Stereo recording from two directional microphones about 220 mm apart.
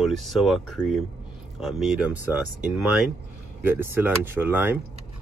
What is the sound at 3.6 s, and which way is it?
Speech, 10° right (ahead or behind).